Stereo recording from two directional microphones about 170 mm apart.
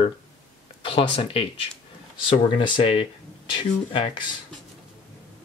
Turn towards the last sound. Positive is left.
turn(degrees=30)  # may be behind; listen again after turning